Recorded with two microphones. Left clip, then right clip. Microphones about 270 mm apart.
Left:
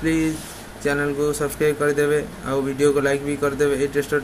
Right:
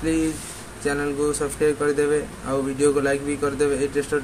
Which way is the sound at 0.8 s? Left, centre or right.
Centre.